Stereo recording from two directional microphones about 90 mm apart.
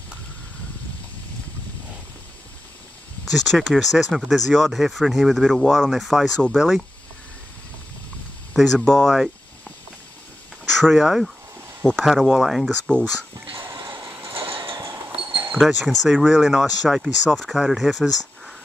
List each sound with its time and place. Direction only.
3.3 s speech: centre (ahead or behind)
8.5 s speech: 5° left (ahead or behind)
10.6 s speech: centre (ahead or behind)
13.7 s a sound: 65° right (ahead or behind)
15.5 s speech: centre (ahead or behind)